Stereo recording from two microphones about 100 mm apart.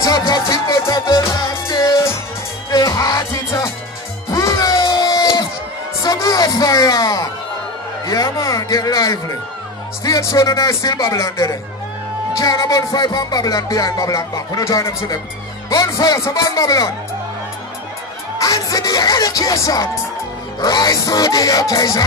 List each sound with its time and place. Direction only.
0.0 s music: 35° left (ahead or behind)
8.0 s a sound: 35° left (ahead or behind)
10.0 s music: 35° left (ahead or behind)
18.4 s music: 35° left (ahead or behind)